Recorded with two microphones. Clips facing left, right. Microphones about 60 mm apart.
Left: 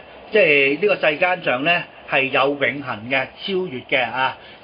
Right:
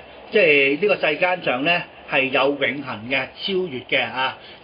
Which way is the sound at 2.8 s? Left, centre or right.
Left.